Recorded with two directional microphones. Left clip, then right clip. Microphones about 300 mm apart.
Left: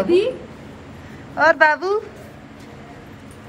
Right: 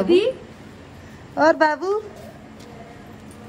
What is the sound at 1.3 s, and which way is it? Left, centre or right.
Speech, centre.